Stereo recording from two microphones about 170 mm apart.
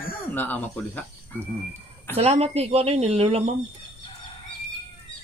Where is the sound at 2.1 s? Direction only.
35° right (ahead or behind).